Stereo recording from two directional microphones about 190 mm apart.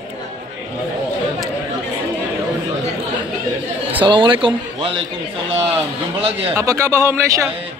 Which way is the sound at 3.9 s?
25° right (ahead or behind).